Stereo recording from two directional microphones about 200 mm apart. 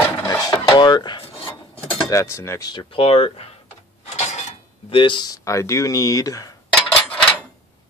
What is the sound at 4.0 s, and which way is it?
Speech, 35° left (ahead or behind).